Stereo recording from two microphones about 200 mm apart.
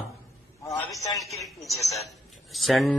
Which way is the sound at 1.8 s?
35° left (ahead or behind).